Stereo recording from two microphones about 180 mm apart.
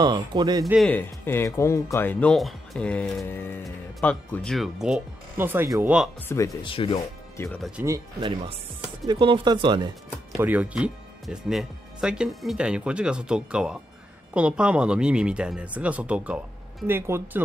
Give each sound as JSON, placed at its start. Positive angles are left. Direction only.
{"t": 0.0, "sound": "speech", "side_deg": -25}
{"t": 0.8, "sound": "speech", "side_deg": 10}
{"t": 6.2, "sound": "speech", "side_deg": 15}
{"t": 6.6, "sound": "speech", "side_deg": 30}
{"t": 7.4, "sound": "speech", "side_deg": 0}
{"t": 8.2, "sound": "speech", "side_deg": -25}
{"t": 10.3, "sound": "speech", "side_deg": -10}